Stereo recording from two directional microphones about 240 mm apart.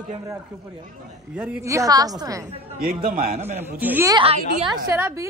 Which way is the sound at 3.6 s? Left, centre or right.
Centre.